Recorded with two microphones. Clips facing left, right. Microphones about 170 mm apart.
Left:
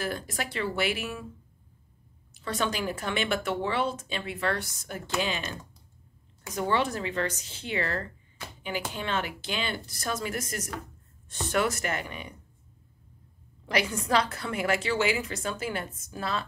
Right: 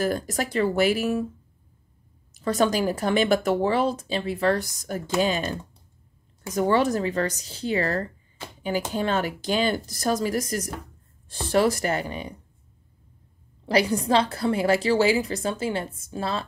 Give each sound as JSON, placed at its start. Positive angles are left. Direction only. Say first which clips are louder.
{"t": 0.0, "sound": "speech", "louder": "right 7 dB", "side_deg": -40}
{"t": 2.3, "sound": "speech", "louder": "right 8 dB", "side_deg": -40}
{"t": 13.7, "sound": "speech", "louder": "right 6 dB", "side_deg": -35}